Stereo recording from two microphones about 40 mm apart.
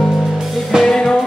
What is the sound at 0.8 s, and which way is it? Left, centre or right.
Music, centre.